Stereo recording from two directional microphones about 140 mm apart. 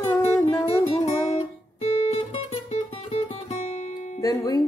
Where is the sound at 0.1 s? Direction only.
25° left (ahead or behind).